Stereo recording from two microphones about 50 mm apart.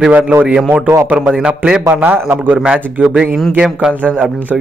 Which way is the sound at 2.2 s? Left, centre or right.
Right.